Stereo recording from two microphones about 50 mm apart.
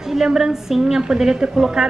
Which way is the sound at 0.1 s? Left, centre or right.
Centre.